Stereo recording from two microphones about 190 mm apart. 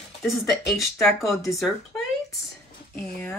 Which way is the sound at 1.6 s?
15° left (ahead or behind).